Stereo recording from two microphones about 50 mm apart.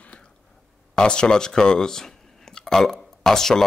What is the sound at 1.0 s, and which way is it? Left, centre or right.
Speech, centre.